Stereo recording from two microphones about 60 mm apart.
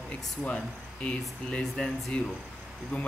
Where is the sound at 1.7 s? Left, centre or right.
Centre.